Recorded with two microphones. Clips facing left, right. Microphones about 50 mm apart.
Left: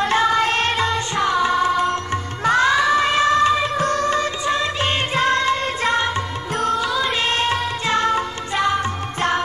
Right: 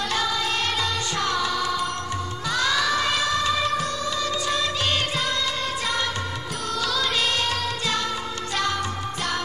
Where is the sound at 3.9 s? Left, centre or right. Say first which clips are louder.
Left 7 dB; left.